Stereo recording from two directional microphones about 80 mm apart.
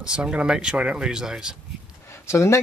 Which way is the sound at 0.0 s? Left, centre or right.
Centre.